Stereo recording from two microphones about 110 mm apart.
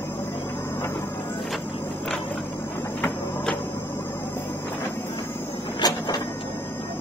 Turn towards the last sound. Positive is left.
turn(degrees=40)  # may be behind; listen again after turning